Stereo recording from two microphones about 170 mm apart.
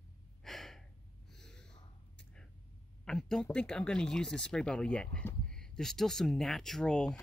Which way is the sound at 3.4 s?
5° left (ahead or behind).